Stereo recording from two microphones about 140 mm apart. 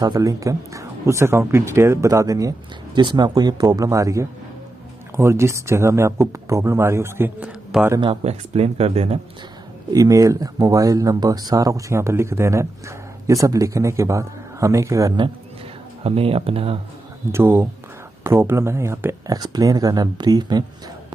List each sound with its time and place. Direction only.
0.0 s speech: 25° right (ahead or behind); by 7.9 s 10° right (ahead or behind)
8.0 s a man's voice: 45° right (ahead or behind)
9.9 s speech: 25° right (ahead or behind)
16.0 s a man's voice: 45° right (ahead or behind)
17.3 s speech: 15° right (ahead or behind)